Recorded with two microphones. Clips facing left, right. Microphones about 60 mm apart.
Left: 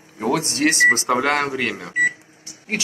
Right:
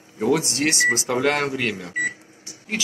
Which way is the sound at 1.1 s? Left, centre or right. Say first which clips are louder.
Left 2 dB; left.